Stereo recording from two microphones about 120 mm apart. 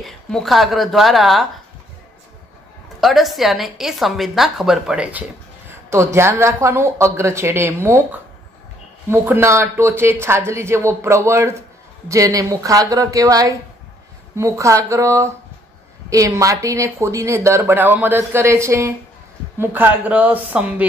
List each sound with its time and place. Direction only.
0.0 s a woman's voice: 5° left (ahead or behind)
3.0 s a woman's voice: centre (ahead or behind)
6.1 s speech: 25° right (ahead or behind)